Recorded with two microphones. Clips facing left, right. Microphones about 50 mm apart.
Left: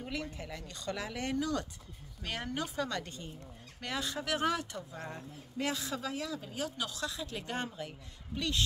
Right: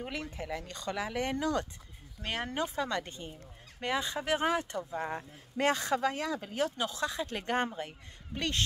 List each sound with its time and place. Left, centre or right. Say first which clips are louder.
0.0 s a woman's voice: right 1 dB; right
0.9 s speech: right 6 dB; right
1.3 s a woman's voice: right 2 dB; right
5.6 s speech: right 7 dB; right
6.8 s a woman's voice: right 5 dB; right